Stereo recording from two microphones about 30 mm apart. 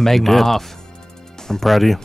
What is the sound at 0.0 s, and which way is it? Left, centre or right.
Speech, centre.